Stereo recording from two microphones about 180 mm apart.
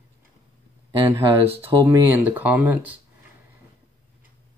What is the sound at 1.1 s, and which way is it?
Speech, 10° right (ahead or behind).